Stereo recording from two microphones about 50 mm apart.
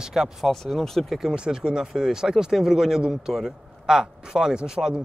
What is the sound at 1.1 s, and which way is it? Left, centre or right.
Speech, centre.